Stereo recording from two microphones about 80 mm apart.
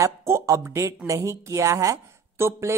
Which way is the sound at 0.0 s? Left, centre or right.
Right.